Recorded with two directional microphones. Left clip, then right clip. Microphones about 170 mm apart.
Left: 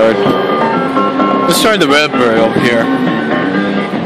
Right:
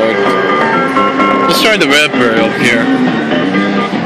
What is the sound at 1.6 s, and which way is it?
Speech, 20° left (ahead or behind).